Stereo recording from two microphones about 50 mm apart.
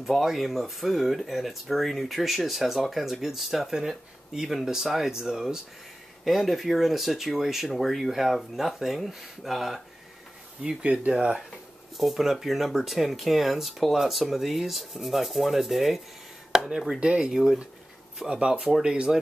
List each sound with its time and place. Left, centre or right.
0.0 s speech: centre
10.6 s speech: right
12.0 s speech: centre
17.0 s speech: centre